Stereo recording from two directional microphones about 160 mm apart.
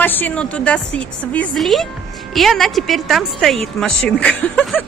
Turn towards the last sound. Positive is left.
turn(degrees=10)  # may be behind; listen again after turning